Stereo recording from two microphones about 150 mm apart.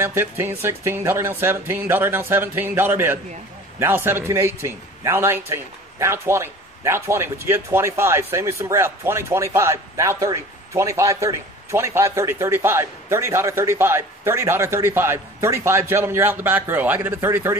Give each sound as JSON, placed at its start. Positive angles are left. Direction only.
{"t": 0.0, "sound": "a man's voice", "side_deg": -15}